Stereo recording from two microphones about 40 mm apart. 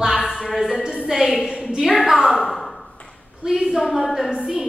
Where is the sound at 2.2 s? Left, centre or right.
Centre.